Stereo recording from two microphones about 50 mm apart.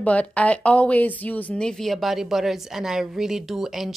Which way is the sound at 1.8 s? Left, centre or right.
Centre.